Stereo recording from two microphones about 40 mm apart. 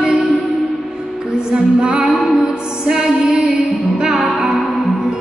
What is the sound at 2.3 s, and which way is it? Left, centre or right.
Music, centre.